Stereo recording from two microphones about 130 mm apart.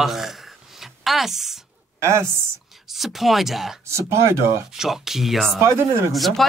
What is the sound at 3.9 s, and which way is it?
Speech, 20° right (ahead or behind).